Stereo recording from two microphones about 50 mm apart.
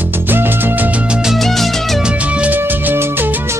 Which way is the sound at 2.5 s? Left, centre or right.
Right.